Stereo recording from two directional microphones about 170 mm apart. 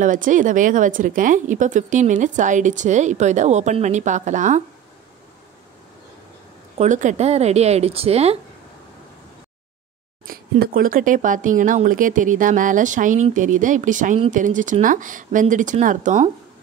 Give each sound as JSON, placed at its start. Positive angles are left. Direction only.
{"t": 0.0, "sound": "a woman's voice", "side_deg": -50}
{"t": 6.8, "sound": "speech", "side_deg": -45}
{"t": 10.2, "sound": "a woman's voice", "side_deg": -60}